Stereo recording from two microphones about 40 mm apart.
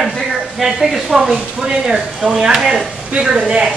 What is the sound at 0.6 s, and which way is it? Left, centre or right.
A woman's voice, centre.